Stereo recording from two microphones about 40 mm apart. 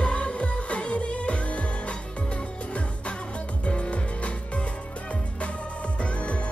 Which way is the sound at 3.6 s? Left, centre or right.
Left.